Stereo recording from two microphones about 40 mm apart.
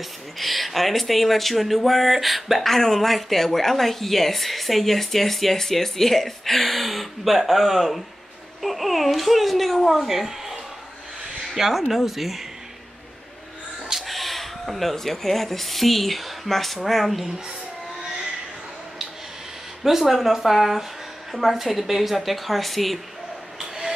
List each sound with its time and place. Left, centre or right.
0.4 s speech: centre
2.7 s speech: centre
11.5 s speech: centre
13.8 s speech: centre
19.8 s speech: centre